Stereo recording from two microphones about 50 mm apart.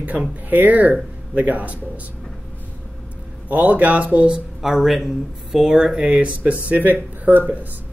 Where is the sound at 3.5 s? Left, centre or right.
Right.